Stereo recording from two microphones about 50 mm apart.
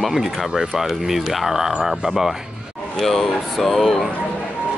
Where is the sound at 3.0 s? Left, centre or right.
Centre.